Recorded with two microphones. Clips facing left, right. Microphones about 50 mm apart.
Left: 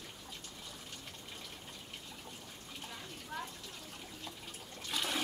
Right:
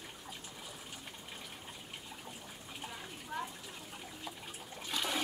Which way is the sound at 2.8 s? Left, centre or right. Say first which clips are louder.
Right 2 dB; centre.